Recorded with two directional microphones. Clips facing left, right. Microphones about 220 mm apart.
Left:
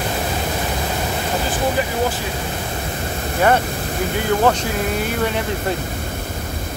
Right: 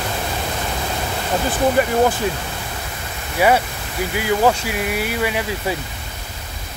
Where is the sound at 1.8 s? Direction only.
55° right (ahead or behind).